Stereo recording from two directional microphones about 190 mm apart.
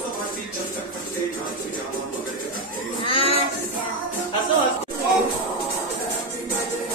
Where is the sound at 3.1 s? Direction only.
30° left (ahead or behind).